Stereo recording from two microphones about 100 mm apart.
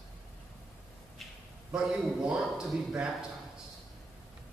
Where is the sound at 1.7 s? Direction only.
10° right (ahead or behind).